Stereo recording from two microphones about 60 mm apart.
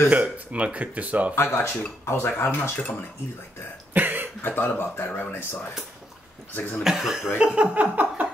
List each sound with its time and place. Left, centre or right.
0.1 s speech: right
1.3 s speech: left
3.9 s cough: right
4.4 s speech: left
6.8 s speech: centre; by 8.3 s right